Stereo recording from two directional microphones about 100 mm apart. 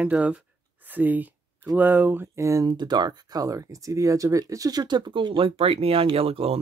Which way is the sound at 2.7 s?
45° right (ahead or behind).